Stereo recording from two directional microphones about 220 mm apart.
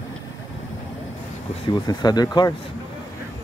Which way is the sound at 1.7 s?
20° left (ahead or behind).